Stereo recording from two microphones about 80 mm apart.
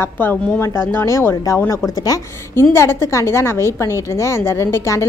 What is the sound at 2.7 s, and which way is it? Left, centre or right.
A woman's voice, left.